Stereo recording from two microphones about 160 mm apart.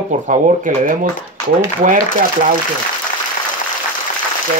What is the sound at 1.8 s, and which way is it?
Speech, 55° right (ahead or behind).